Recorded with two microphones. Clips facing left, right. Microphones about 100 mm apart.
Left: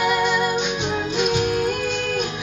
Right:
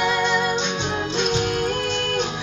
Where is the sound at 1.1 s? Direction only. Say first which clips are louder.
Left 2 dB; 25° right (ahead or behind).